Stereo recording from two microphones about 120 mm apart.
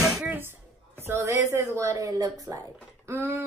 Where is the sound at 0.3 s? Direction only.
20° right (ahead or behind).